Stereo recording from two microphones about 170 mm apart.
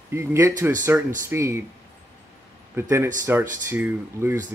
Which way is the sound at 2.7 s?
15° right (ahead or behind).